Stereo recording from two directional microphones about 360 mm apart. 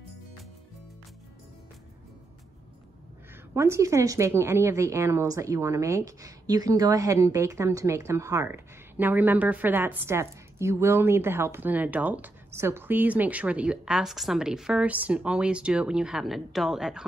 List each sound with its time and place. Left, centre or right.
3.5 s a woman's voice: centre